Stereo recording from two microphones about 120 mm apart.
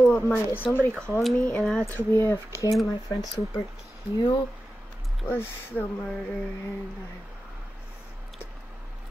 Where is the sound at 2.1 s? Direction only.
25° left (ahead or behind).